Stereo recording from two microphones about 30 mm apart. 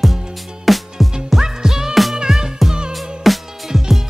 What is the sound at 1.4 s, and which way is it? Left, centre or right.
Music, centre.